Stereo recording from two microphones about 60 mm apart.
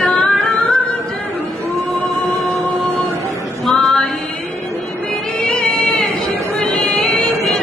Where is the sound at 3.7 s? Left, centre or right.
Centre.